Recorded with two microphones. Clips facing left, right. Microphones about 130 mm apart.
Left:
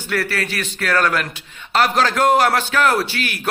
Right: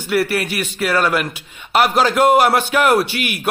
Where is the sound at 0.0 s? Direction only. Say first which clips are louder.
Right 4 dB; 15° right (ahead or behind).